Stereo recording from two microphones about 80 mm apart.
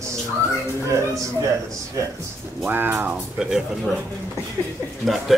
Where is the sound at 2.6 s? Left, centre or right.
Right.